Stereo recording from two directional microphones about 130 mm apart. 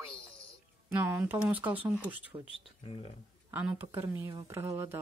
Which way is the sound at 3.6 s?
15° right (ahead or behind).